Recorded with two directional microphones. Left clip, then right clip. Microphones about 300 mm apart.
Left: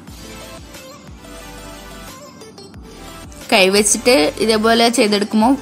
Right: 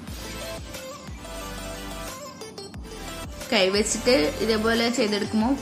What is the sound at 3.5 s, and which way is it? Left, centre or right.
A woman's voice, left.